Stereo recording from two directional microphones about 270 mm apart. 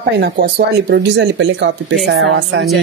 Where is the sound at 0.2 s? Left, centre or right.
Right.